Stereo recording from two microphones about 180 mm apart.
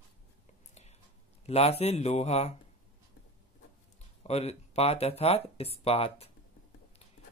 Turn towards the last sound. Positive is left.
turn(degrees=35)  # may be behind; listen again after turning